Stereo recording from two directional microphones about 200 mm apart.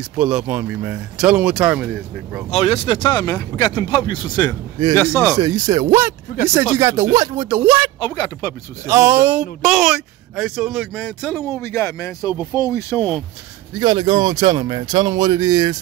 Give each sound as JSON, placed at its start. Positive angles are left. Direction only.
{"t": 0.2, "sound": "speech", "side_deg": -5}
{"t": 2.5, "sound": "speech", "side_deg": 30}
{"t": 5.3, "sound": "speech", "side_deg": -20}
{"t": 7.4, "sound": "speech", "side_deg": -5}
{"t": 8.0, "sound": "speech", "side_deg": 20}
{"t": 8.8, "sound": "speech", "side_deg": -15}
{"t": 13.7, "sound": "speech", "side_deg": -20}